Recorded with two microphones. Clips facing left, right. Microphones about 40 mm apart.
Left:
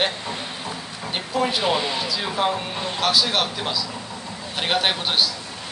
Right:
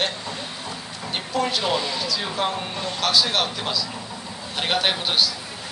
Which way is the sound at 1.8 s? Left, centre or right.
Left.